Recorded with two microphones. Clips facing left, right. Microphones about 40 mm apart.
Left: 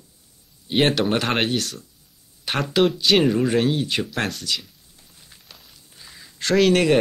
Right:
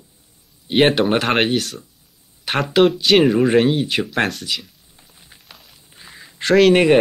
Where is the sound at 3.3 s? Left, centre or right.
Right.